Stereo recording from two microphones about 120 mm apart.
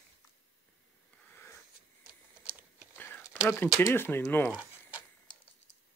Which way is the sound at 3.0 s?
15° left (ahead or behind).